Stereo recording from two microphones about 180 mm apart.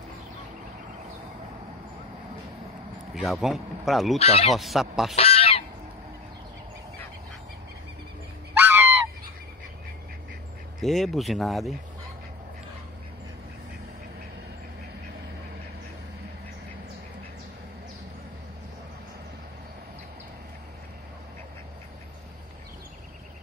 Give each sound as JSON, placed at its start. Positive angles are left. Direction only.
{"t": 3.2, "sound": "speech", "side_deg": 0}
{"t": 4.2, "sound": "speech", "side_deg": 35}
{"t": 4.6, "sound": "speech", "side_deg": 0}
{"t": 5.1, "sound": "goose", "side_deg": 35}
{"t": 8.5, "sound": "goose", "side_deg": -10}
{"t": 10.8, "sound": "speech", "side_deg": 0}